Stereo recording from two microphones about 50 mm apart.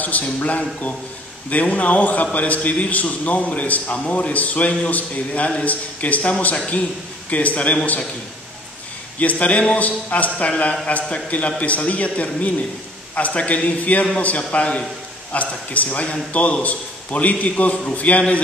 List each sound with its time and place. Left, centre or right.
0.0 s a man's voice: left
9.2 s a man's voice: left